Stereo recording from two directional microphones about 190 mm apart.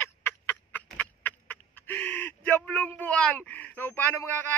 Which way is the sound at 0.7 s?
10° left (ahead or behind).